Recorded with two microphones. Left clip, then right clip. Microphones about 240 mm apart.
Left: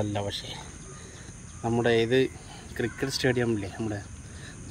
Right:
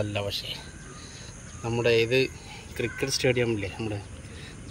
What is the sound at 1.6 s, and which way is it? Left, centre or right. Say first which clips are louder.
Speech: right 1 dB; centre.